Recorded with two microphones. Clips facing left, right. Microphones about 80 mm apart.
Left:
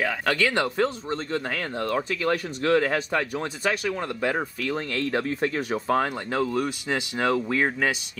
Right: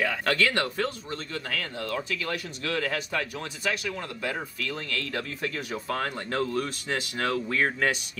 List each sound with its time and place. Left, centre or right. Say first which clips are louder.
0.0 s speech: left 1 dB; centre; by 6.0 s left
6.3 s speech: left 3 dB; centre
7.2 s speech: left 3 dB; left